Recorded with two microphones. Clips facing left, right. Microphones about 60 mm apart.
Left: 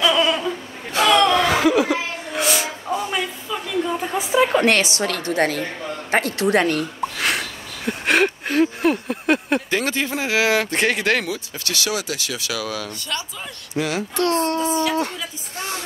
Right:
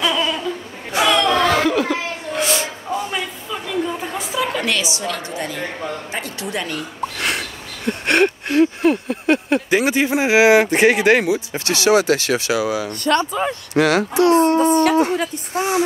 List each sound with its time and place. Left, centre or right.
0.2 s a sound: centre
0.9 s chuckle: centre
4.3 s a sound: left
4.6 s a woman's voice: left
7.2 s a sound: centre
9.7 s speech: centre; by 12.4 s right
12.4 s speech: right
13.0 s speech: right
13.7 s a child's voice: right
14.1 s speech: centre
14.6 s speech: right